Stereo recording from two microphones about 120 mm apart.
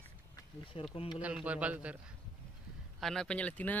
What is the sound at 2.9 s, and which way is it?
Speech, 5° left (ahead or behind).